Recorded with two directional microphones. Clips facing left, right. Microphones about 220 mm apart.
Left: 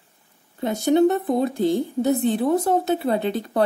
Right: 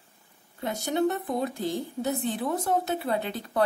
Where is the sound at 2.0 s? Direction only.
25° left (ahead or behind).